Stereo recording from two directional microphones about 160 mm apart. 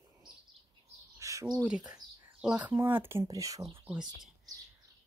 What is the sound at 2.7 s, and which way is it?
Speech, 15° right (ahead or behind).